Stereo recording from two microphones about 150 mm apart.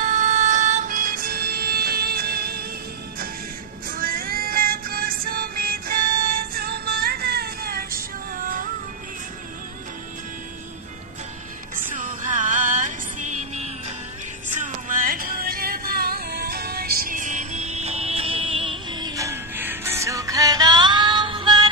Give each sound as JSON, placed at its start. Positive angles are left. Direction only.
{"t": 0.0, "sound": "music", "side_deg": -55}
{"t": 3.9, "sound": "music", "side_deg": -70}
{"t": 6.5, "sound": "music", "side_deg": -90}
{"t": 11.9, "sound": "music", "side_deg": -55}